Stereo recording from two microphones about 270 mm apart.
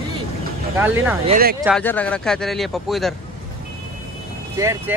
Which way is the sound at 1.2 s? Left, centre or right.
Right.